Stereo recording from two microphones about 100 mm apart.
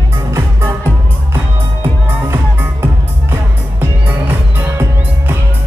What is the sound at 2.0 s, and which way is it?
Music, 25° right (ahead or behind).